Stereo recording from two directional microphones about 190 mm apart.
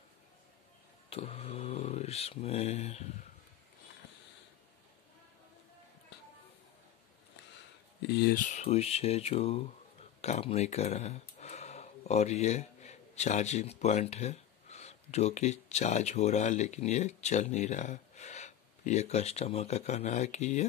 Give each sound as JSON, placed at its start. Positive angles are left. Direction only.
{"t": 1.1, "sound": "speech", "side_deg": 30}
{"t": 8.1, "sound": "speech", "side_deg": 55}